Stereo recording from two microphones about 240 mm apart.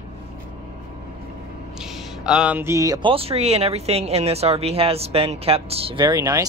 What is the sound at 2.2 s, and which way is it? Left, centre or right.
Speech, centre.